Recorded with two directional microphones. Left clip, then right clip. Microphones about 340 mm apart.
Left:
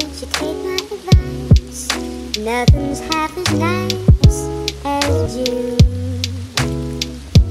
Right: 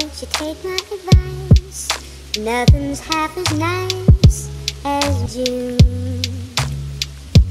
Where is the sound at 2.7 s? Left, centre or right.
Centre.